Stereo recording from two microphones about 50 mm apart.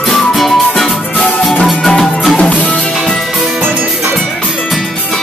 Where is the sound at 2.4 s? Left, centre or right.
Left.